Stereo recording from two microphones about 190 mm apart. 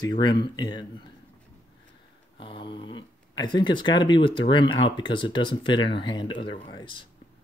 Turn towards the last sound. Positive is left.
turn(degrees=25)  # may be behind; listen again after turning